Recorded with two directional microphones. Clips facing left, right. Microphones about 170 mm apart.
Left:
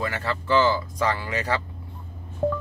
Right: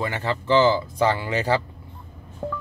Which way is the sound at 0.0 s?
25° right (ahead or behind).